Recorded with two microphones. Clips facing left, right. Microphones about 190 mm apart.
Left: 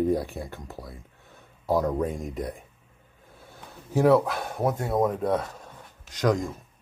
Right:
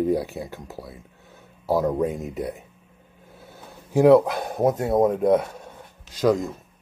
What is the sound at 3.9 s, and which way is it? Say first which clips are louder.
Speech: right 5 dB; 15° right (ahead or behind).